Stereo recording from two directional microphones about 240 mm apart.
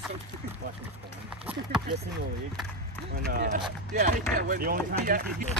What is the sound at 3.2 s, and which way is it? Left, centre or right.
Speech, right.